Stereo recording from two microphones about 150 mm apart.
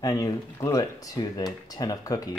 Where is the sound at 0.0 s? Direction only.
25° left (ahead or behind).